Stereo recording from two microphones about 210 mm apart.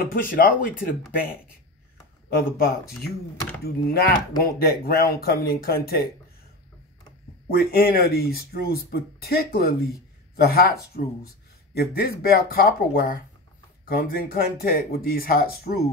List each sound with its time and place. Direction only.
0.0 s speech: 45° left (ahead or behind)
2.2 s speech: 45° left (ahead or behind)
7.4 s speech: 45° left (ahead or behind)